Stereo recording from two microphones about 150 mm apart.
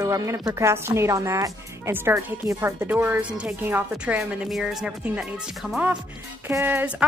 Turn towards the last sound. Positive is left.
turn(degrees=-15)  # may be behind; listen again after turning